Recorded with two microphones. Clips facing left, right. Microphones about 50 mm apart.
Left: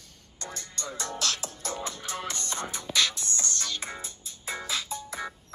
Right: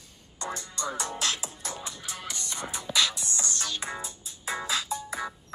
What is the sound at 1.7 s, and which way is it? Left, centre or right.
Music, left.